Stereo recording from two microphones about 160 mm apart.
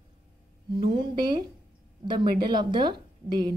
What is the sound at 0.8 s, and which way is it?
A man's voice, 30° right (ahead or behind).